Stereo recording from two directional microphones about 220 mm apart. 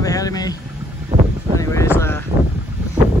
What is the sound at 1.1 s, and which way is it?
Boat, 30° right (ahead or behind).